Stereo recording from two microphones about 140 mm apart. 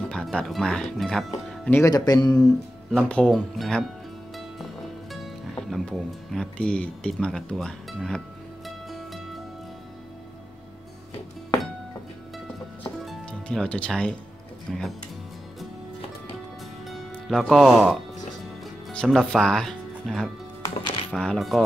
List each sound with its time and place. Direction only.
0.1 s speech: 5° left (ahead or behind)
1.6 s speech: 15° left (ahead or behind)
1.9 s speech: 25° left (ahead or behind)
2.4 s speech: 5° left (ahead or behind)
5.1 s speech: centre (ahead or behind)
8.6 s music: centre (ahead or behind)
12.8 s music: 10° left (ahead or behind)
14.7 s speech: centre (ahead or behind)
16.8 s music: centre (ahead or behind)
18.9 s speech: 5° left (ahead or behind)